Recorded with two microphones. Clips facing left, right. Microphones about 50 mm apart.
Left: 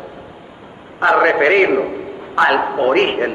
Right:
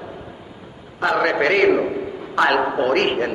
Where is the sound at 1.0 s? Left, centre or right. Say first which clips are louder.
Left 6 dB; left.